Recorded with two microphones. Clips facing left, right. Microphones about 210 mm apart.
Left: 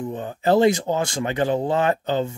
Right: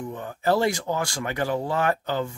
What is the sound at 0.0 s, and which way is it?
Speech, 20° left (ahead or behind).